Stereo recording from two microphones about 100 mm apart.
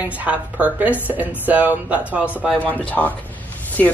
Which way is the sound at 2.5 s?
15° left (ahead or behind).